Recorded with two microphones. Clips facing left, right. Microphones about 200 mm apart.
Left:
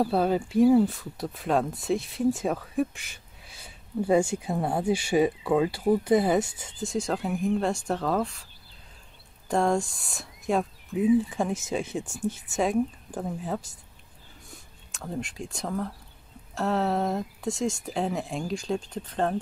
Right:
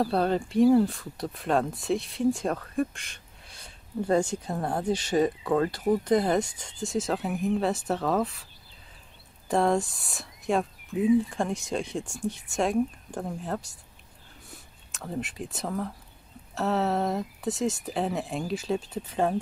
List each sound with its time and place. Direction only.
0.0 s speech: 5° left (ahead or behind)
9.5 s speech: centre (ahead or behind)